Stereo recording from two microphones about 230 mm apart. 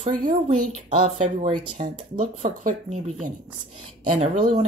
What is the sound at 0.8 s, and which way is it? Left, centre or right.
Speech, right.